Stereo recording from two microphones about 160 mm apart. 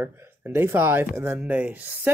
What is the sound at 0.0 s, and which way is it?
Speech, 15° right (ahead or behind).